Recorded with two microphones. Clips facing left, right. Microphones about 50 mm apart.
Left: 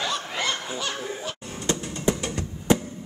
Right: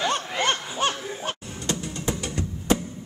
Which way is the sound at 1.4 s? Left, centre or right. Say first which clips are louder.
Left 2 dB; centre.